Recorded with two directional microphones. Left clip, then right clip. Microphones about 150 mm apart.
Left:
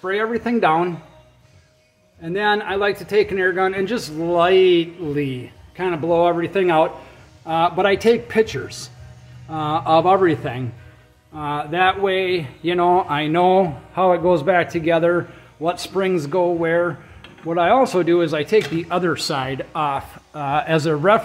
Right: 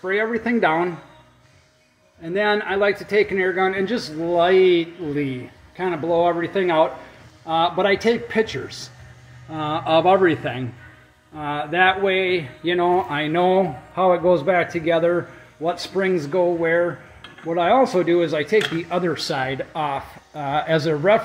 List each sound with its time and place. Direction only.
0.0 s speech: 5° left (ahead or behind)
2.2 s speech: 5° right (ahead or behind)
3.8 s speech: 35° left (ahead or behind)
4.2 s speech: 5° left (ahead or behind)
8.6 s speech: 30° left (ahead or behind)
9.5 s speech: centre (ahead or behind)
11.3 s speech: 5° right (ahead or behind)